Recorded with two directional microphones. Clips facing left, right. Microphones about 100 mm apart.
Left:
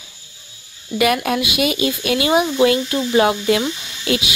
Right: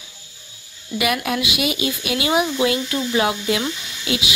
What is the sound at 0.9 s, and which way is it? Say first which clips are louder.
A woman's voice: left 4 dB; 40° left (ahead or behind).